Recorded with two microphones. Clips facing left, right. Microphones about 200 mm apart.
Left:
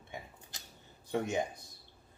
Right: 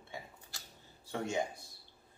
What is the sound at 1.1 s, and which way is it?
Speech, 20° left (ahead or behind).